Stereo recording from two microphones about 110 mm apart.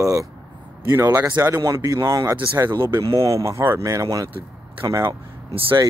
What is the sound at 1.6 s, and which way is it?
Speech, 35° right (ahead or behind).